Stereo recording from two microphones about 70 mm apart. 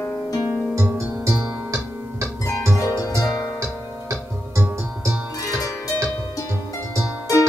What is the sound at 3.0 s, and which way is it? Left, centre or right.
Music, left.